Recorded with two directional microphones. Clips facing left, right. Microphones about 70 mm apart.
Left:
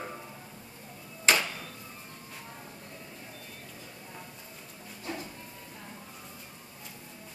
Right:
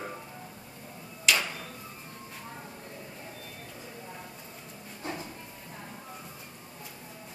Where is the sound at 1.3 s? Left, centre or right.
Left.